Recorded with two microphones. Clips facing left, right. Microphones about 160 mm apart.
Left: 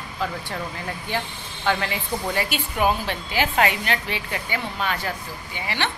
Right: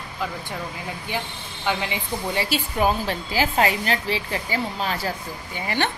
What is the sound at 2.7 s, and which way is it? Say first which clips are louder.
Speech: even; 40° right (ahead or behind).